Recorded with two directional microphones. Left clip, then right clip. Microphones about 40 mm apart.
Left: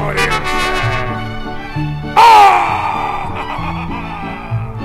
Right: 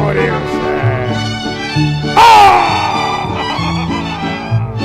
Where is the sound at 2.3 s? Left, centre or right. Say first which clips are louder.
Right 1 dB; left.